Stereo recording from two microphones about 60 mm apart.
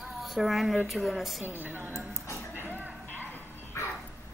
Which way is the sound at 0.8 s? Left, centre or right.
Centre.